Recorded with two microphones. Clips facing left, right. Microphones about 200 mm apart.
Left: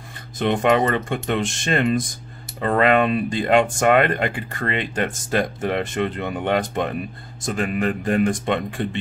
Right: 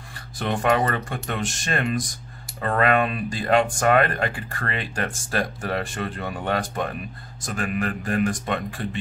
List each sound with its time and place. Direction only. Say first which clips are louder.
0.4 s speech: left 4 dB; 20° left (ahead or behind)